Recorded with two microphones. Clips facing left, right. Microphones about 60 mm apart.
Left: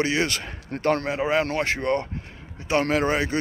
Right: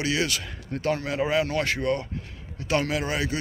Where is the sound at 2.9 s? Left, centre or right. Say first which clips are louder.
Left 5 dB; left.